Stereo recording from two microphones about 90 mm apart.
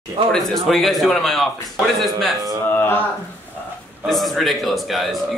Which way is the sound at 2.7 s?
25° left (ahead or behind).